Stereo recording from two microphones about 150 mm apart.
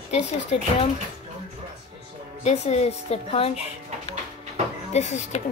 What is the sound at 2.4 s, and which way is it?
Speech, 50° left (ahead or behind).